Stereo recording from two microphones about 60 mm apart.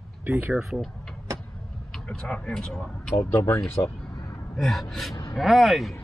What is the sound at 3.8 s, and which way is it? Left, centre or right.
Speech, left.